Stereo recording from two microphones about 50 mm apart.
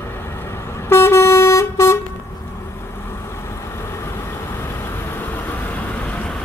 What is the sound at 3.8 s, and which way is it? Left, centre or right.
Vehicle, left.